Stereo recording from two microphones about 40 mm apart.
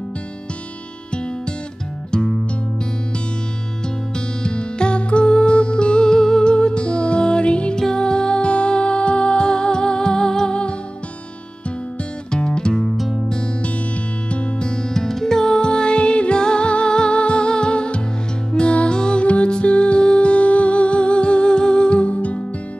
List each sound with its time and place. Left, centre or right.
2.0 s music: left
4.4 s music: left
7.7 s music: centre
12.3 s music: left
12.9 s music: centre
13.3 s music: left
15.0 s music: centre; by 22.4 s left